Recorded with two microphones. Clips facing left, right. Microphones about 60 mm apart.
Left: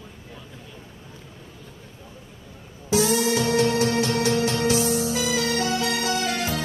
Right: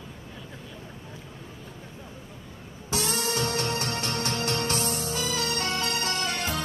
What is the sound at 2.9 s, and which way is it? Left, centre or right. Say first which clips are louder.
Music: left 8 dB; right.